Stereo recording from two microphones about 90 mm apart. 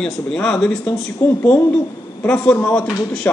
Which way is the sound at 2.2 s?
15° left (ahead or behind).